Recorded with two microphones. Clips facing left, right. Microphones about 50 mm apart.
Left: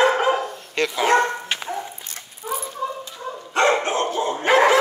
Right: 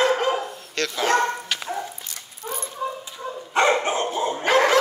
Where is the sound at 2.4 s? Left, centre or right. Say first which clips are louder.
Left 4 dB; centre.